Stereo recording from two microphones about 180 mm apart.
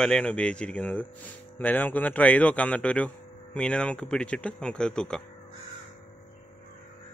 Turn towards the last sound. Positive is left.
turn(degrees=5)  # may be behind; listen again after turning